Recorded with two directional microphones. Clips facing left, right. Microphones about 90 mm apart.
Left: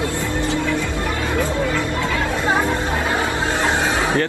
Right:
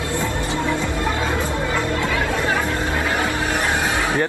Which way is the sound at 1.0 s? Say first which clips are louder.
Left 1 dB; 20° right (ahead or behind).